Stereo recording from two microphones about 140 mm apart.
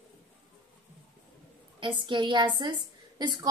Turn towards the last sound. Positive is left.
turn(degrees=-30)  # may be behind; listen again after turning